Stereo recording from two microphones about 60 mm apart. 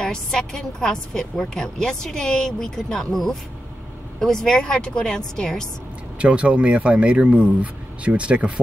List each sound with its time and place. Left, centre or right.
0.0 s a woman's voice: centre
6.1 s speech: centre